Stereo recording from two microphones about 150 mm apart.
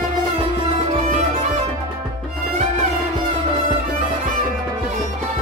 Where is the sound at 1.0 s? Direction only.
50° right (ahead or behind).